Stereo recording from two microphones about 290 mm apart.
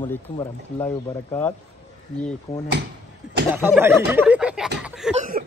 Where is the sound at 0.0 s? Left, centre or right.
Centre.